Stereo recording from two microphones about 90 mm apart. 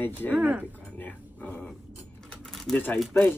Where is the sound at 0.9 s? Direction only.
20° left (ahead or behind).